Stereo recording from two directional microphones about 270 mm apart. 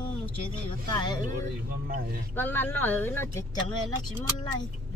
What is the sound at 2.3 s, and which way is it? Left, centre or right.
Speech, centre.